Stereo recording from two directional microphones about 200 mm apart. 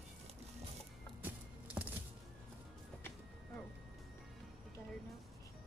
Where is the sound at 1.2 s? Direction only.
10° right (ahead or behind).